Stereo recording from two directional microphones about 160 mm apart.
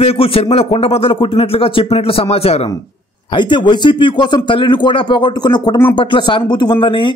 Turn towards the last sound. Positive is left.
turn(degrees=30)  # may be behind; listen again after turning